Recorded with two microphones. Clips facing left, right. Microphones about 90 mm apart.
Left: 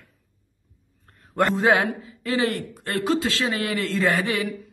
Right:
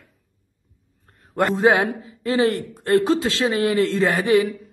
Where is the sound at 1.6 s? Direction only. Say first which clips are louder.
Right 5 dB; 20° right (ahead or behind).